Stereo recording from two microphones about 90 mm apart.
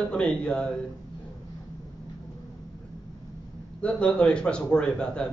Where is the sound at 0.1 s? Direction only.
10° left (ahead or behind).